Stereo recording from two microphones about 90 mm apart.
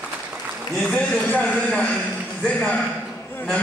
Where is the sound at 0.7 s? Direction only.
10° left (ahead or behind).